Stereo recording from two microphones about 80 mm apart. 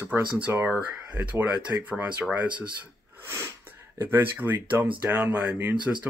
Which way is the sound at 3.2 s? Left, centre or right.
Right.